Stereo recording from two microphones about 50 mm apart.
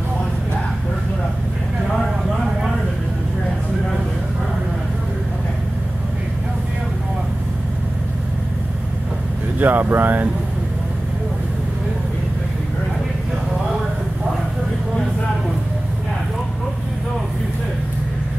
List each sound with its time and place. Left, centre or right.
9.6 s speech: right